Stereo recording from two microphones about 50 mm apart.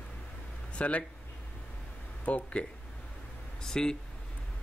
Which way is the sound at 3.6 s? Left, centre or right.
Centre.